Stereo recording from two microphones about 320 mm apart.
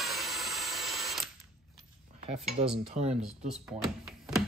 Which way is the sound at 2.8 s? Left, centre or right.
Centre.